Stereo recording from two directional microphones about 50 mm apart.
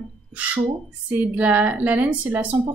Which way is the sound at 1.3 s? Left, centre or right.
Right.